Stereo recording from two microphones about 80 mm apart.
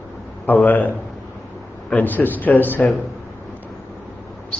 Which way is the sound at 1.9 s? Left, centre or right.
Left.